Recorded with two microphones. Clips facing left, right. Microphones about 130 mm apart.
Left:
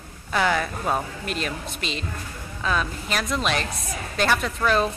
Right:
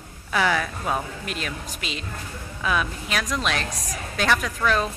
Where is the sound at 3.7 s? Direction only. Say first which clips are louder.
Left 1 dB; 90° right.